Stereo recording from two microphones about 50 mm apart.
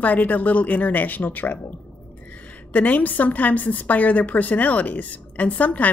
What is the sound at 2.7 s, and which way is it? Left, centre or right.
Speech, left.